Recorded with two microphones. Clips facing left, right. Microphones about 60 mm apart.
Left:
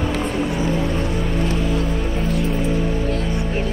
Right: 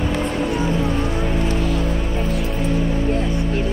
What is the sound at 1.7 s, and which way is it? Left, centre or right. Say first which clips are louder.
Music: even; centre.